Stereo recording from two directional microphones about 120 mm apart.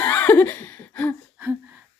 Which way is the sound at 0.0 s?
15° left (ahead or behind).